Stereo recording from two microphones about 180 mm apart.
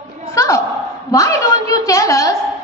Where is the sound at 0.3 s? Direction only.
15° left (ahead or behind).